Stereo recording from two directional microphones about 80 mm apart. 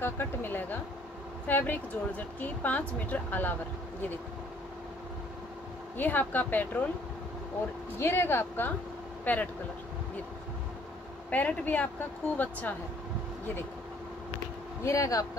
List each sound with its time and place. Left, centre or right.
0.0 s a sound: left
1.5 s speech: left
5.9 s speech: left
8.0 s speech: left
11.2 s speech: centre
14.9 s speech: left